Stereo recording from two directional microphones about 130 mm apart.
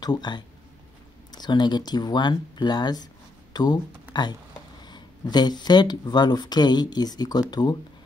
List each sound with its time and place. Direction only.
0.0 s speech: 35° left (ahead or behind)